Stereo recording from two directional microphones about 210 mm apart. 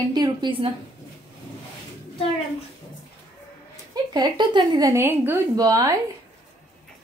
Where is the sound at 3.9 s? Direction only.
20° right (ahead or behind).